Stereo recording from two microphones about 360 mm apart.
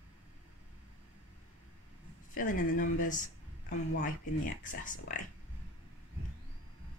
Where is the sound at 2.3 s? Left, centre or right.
Left.